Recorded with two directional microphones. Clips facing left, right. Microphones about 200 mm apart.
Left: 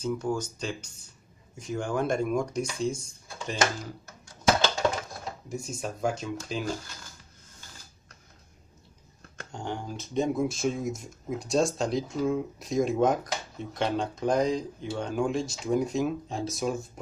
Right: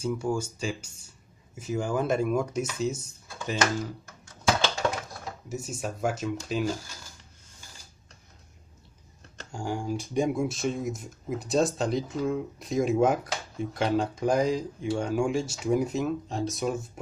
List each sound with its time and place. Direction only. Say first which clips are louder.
0.0 s speech: right 1 dB; 10° right (ahead or behind)
5.5 s speech: right 1 dB; 5° right (ahead or behind)
9.5 s speech: right 4 dB; 10° right (ahead or behind)
10.4 s speech: left 1 dB; centre (ahead or behind)